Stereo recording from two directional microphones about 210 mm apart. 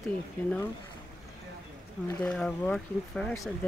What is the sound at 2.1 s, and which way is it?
Speech, 5° left (ahead or behind).